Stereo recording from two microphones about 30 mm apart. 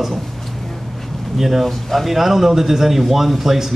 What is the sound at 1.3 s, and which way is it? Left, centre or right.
Speech, centre.